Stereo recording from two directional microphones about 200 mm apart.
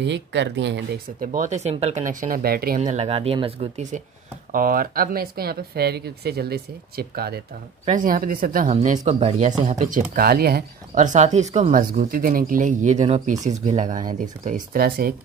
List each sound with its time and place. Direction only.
0.0 s speech: 60° right (ahead or behind)
2.8 s speech: 35° right (ahead or behind)
4.5 s speech: 45° right (ahead or behind)